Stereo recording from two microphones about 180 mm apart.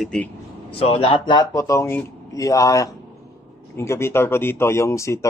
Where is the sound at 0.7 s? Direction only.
35° left (ahead or behind).